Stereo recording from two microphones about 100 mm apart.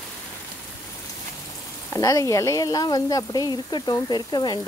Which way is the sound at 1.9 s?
35° left (ahead or behind).